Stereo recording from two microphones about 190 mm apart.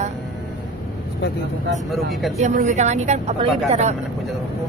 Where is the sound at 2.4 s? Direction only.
40° right (ahead or behind).